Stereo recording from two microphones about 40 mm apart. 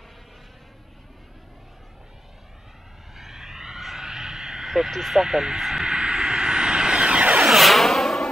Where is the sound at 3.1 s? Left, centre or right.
Centre.